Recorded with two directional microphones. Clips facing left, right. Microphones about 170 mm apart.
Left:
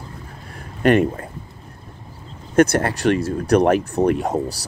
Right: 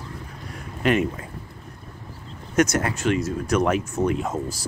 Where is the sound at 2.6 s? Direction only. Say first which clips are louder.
Left 5 dB; 30° left (ahead or behind).